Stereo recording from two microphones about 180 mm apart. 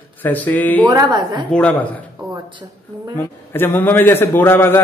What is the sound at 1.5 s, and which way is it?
Speech, 5° left (ahead or behind).